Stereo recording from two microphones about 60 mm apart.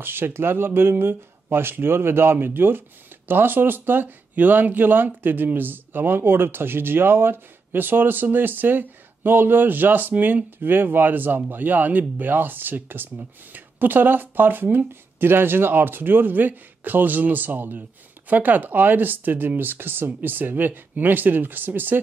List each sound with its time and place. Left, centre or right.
0.0 s speech: right